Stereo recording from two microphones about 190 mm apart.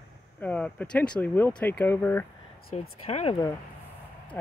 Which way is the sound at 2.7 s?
35° left (ahead or behind).